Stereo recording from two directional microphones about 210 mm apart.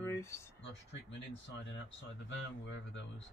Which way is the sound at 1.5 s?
60° left (ahead or behind).